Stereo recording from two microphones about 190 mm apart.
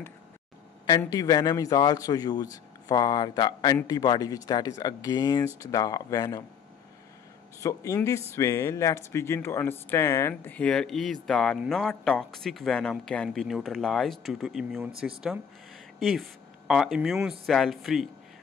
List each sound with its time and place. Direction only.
0.8 s a man's voice: 20° left (ahead or behind)
7.6 s speech: 15° left (ahead or behind); by 18.1 s centre (ahead or behind)